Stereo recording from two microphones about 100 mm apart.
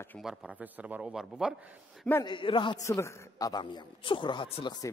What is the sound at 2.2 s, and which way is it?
Speech, 55° left (ahead or behind).